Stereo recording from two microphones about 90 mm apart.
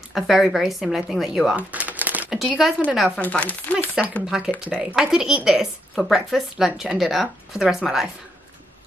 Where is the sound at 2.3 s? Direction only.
Centre (ahead or behind).